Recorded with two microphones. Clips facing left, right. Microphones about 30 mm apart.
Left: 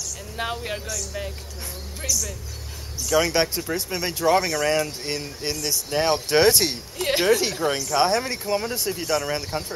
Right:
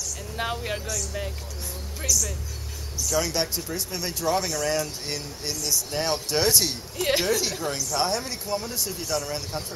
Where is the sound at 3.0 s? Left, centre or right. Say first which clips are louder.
Left 5 dB; left.